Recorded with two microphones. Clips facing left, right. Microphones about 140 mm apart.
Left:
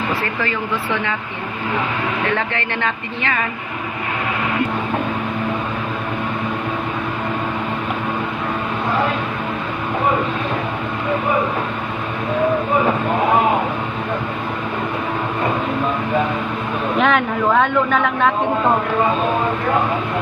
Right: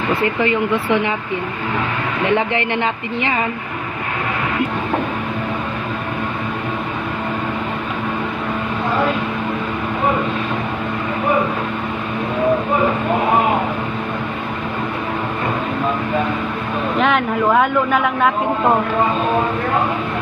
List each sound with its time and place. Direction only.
0.1 s a woman's voice: 25° right (ahead or behind)
2.3 s a woman's voice: 25° right (ahead or behind)
17.0 s a woman's voice: 5° right (ahead or behind)